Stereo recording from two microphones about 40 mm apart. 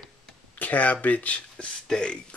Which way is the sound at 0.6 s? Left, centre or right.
Left.